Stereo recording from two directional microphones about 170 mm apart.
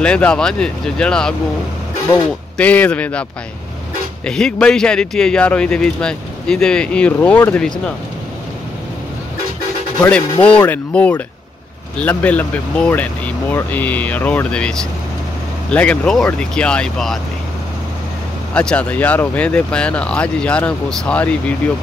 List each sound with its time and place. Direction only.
0.0 s speech: 5° left (ahead or behind)
2.5 s speech: 10° left (ahead or behind)
4.3 s speech: 5° left (ahead or behind)
10.0 s speech: 5° left (ahead or behind)
18.5 s speech: 5° left (ahead or behind)